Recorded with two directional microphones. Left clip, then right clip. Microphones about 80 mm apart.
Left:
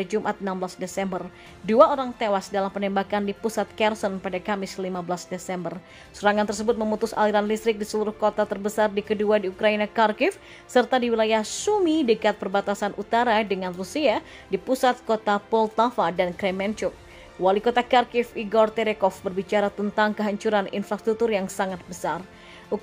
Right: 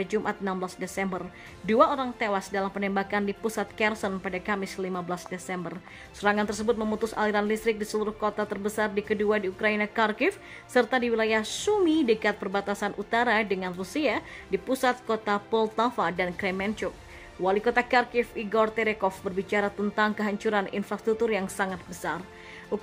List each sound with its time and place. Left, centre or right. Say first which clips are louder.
0.0 s a woman's voice: left 3 dB; left
22.7 s music: left 3 dB; left